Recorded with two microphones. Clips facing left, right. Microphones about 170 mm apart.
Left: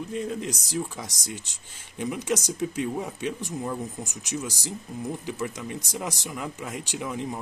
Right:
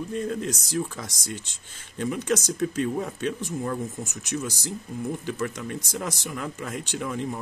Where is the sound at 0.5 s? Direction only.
15° left (ahead or behind).